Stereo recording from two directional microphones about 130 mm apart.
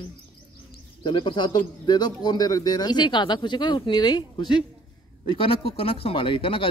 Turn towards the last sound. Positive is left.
turn(degrees=45)  # may be behind; listen again after turning